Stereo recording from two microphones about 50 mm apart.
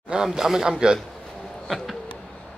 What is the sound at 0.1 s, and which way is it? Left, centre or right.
Speech, centre.